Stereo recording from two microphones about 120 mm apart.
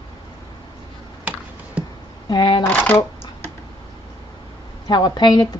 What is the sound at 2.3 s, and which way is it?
Shuffling cards, 40° left (ahead or behind).